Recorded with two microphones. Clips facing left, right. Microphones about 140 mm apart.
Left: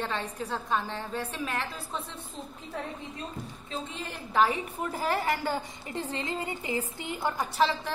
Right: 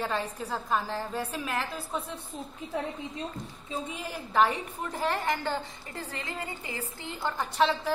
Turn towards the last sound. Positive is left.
turn(degrees=15)  # may be behind; listen again after turning